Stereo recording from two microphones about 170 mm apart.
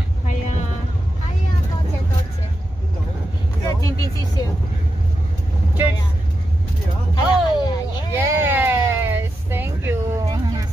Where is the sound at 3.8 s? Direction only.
20° left (ahead or behind).